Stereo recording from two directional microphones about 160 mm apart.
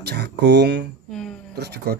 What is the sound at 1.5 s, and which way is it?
Speech, 90° right.